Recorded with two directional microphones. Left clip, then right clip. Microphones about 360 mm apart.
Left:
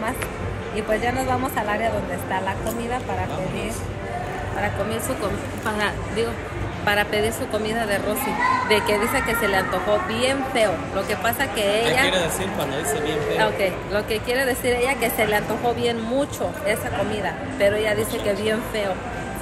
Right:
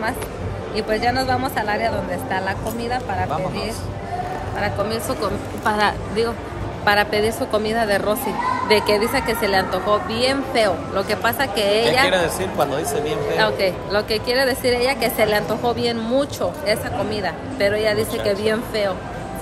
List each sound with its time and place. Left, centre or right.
0.7 s speech: centre
4.6 s speech: centre